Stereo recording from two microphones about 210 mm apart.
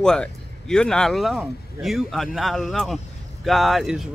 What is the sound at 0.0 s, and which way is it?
A man's voice, 5° left (ahead or behind).